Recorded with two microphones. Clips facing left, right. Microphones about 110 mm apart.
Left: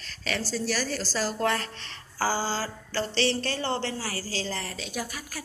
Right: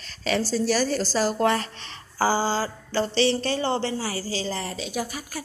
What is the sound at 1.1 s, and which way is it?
Speech, 15° right (ahead or behind).